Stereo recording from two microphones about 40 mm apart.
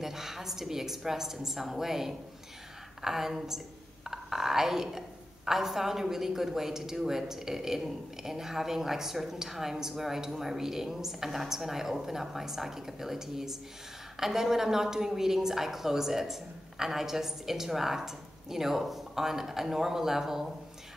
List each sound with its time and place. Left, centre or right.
0.0 s a woman's voice: centre